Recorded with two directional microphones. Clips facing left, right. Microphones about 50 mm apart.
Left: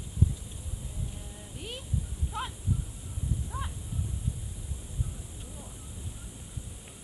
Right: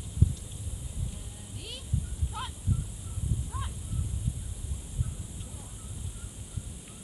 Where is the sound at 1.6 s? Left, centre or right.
Centre.